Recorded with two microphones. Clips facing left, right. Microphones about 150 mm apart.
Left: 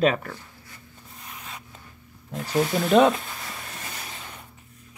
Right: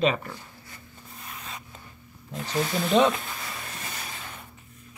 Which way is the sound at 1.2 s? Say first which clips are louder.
Even; 10° left (ahead or behind).